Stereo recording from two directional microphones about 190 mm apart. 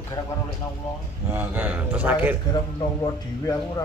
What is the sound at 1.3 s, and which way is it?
Speech, 10° right (ahead or behind).